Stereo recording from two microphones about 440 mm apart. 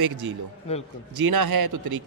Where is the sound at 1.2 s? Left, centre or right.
Right.